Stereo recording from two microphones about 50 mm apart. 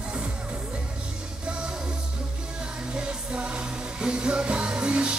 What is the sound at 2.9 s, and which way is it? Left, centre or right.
Music, right.